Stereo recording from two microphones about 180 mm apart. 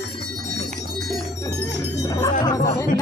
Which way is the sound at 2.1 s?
20° left (ahead or behind).